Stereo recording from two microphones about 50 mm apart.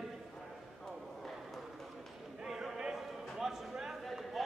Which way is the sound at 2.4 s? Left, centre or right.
Centre.